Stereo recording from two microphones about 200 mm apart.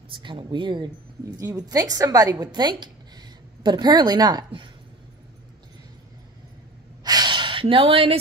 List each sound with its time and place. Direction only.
0.1 s a woman's voice: 25° right (ahead or behind)
7.0 s snort: 20° right (ahead or behind)